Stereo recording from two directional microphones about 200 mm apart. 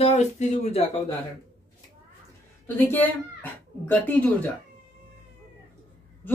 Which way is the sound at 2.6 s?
10° left (ahead or behind).